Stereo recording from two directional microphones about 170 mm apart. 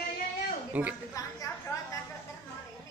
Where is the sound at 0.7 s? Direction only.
10° right (ahead or behind).